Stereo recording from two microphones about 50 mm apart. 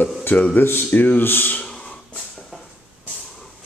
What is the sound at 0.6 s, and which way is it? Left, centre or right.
Speech, left.